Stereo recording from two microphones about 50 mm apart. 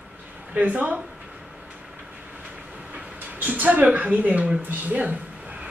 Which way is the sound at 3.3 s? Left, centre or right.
Right.